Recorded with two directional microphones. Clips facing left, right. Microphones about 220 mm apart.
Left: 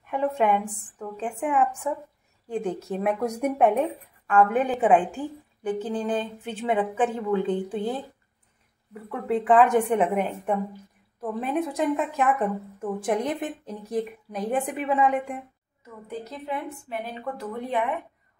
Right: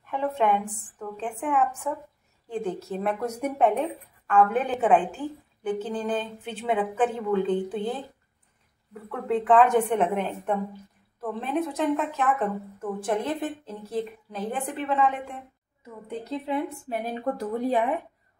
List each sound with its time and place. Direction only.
0.1 s a woman's voice: 10° left (ahead or behind)
8.9 s a woman's voice: centre (ahead or behind)
16.1 s a woman's voice: 25° right (ahead or behind)
16.9 s speech: 40° right (ahead or behind)